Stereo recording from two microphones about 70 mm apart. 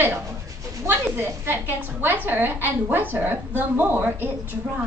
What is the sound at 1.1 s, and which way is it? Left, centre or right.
A woman's voice, right.